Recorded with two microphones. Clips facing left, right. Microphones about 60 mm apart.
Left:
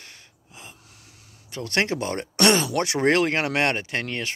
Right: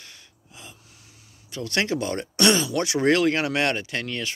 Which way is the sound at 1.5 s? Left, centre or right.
Left.